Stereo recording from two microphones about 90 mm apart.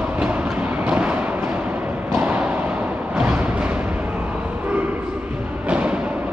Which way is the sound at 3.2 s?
15° right (ahead or behind).